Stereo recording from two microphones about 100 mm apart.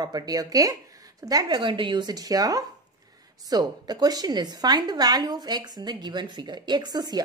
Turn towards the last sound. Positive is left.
turn(degrees=-40)  # may be behind; listen again after turning